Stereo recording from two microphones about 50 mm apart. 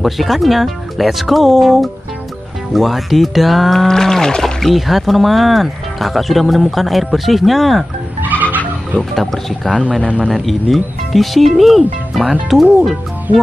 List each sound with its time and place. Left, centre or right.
0.0 s speech: centre
8.2 s music: right
9.1 s speech: centre
10.0 s a man's voice: right
10.3 s speech: centre